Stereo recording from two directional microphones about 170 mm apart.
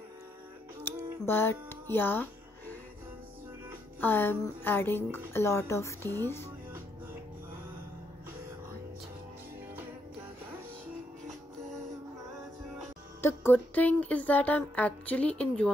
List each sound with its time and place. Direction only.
0.8 s speech: 15° left (ahead or behind)
4.0 s speech: 10° left (ahead or behind)
13.2 s speech: 15° left (ahead or behind)